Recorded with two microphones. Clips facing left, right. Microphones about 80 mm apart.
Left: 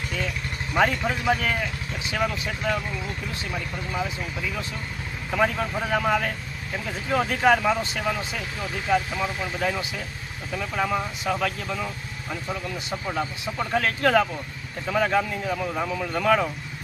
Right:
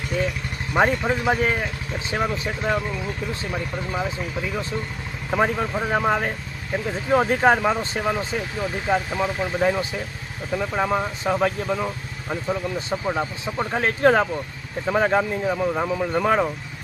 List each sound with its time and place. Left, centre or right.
0.7 s speech: right
5.3 s speech: right